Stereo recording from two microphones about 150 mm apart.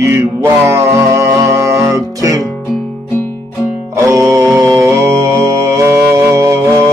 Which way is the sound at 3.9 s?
20° right (ahead or behind).